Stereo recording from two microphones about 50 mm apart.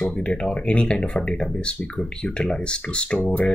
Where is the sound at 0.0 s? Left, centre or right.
Left.